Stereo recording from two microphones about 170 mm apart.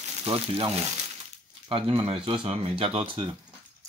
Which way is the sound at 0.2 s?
35° right (ahead or behind).